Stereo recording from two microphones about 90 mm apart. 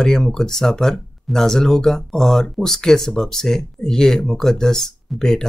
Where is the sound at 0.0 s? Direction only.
5° left (ahead or behind).